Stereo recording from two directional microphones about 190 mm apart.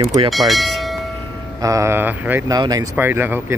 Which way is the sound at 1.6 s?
15° right (ahead or behind).